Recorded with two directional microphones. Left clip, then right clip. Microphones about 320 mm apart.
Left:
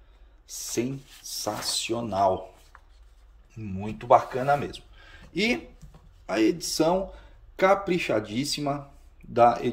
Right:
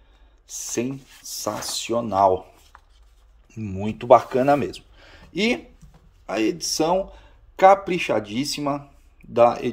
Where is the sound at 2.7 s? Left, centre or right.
Right.